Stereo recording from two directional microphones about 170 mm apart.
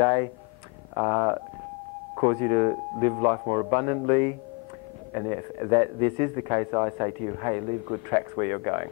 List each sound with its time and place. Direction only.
0.0 s speech: 35° right (ahead or behind)